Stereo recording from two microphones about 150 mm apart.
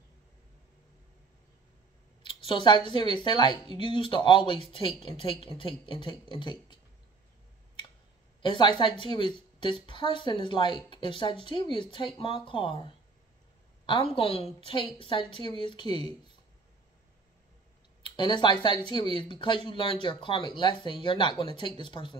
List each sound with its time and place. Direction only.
2.2 s a sound: 35° left (ahead or behind)
3.0 s a woman's voice: 30° left (ahead or behind)
3.6 s speech: 40° right (ahead or behind)
3.9 s a woman's voice: 35° left (ahead or behind)
8.4 s a woman's voice: 30° left (ahead or behind)
18.0 s a woman's voice: 30° left (ahead or behind)